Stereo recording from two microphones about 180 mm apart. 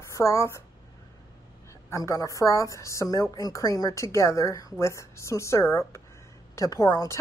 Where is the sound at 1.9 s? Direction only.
20° left (ahead or behind).